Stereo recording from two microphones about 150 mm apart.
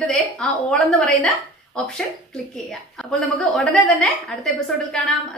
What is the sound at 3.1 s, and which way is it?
Speech, 5° left (ahead or behind).